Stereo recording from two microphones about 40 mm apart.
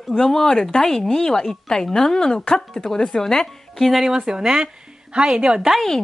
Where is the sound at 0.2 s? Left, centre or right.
Centre.